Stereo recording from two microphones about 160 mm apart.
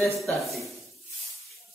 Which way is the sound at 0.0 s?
Centre (ahead or behind).